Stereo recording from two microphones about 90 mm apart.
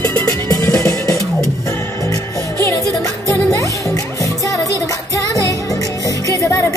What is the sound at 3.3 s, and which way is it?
Music, 40° left (ahead or behind).